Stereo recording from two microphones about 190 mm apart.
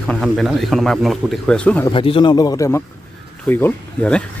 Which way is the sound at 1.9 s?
25° left (ahead or behind).